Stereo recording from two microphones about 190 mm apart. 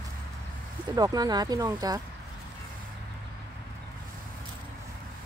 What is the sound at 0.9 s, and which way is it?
Speech, 20° right (ahead or behind).